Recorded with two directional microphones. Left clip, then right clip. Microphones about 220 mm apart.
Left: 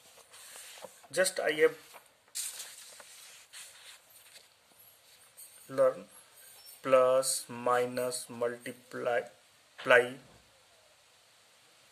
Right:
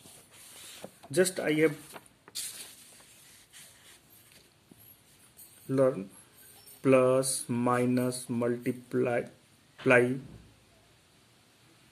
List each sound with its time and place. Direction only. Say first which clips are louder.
1.1 s speech: right 2 dB; centre (ahead or behind)
2.0 s a sound: right 5 dB; 40° right (ahead or behind)
5.7 s speech: right 1 dB; 5° right (ahead or behind)